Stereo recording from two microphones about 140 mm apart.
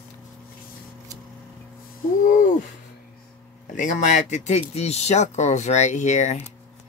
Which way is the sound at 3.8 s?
65° left (ahead or behind).